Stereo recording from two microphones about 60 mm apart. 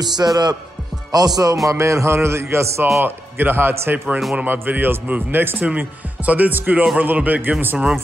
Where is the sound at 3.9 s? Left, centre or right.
Right.